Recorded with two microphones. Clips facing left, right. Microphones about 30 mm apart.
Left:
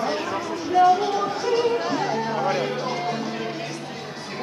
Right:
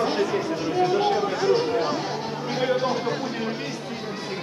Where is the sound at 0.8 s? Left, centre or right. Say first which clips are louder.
Left 4 dB; right.